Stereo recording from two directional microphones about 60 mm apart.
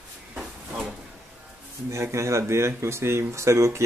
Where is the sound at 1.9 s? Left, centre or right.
Right.